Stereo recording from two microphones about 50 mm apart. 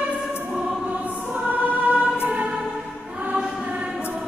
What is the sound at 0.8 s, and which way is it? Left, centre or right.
Choir, right.